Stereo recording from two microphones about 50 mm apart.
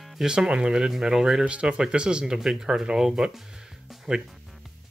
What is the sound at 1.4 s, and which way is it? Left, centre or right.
Speech, right.